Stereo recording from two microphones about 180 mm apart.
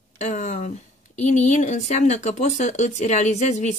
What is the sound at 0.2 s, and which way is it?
Speech, 40° left (ahead or behind).